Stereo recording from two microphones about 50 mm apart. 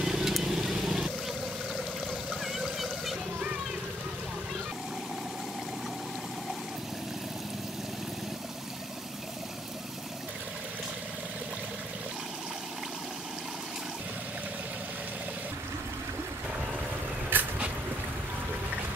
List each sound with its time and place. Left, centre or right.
0.0 s vehicle: centre
2.4 s a sound: centre
17.3 s vehicle: right